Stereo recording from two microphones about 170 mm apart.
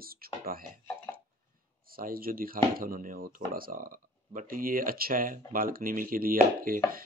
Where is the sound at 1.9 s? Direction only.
60° right (ahead or behind).